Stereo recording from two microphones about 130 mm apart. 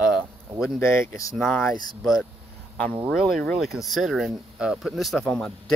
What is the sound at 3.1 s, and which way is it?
Speech, 5° left (ahead or behind).